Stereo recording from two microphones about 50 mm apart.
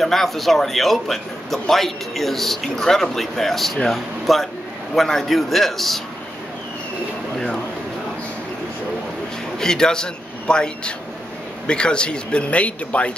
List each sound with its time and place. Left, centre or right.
0.0 s a man's voice: centre
9.6 s a man's voice: centre